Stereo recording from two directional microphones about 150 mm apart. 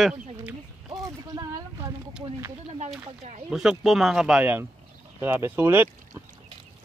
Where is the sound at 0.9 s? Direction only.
25° right (ahead or behind).